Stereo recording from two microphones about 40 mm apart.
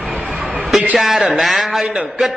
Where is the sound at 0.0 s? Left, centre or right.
Right.